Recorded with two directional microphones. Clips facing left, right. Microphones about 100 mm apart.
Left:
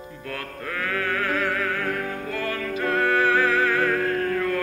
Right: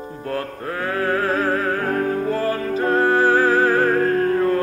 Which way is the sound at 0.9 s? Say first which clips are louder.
Right 6 dB; 30° right (ahead or behind).